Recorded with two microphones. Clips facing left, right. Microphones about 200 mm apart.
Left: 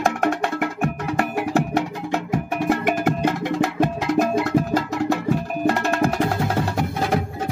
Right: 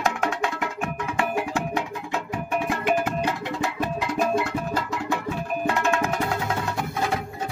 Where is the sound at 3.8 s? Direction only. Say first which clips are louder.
Left 6 dB; 75° left (ahead or behind).